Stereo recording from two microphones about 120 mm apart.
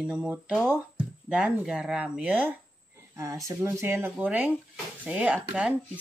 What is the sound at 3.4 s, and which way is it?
Speech, 25° right (ahead or behind).